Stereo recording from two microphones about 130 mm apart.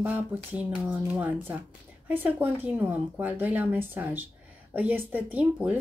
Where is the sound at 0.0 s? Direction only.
15° right (ahead or behind).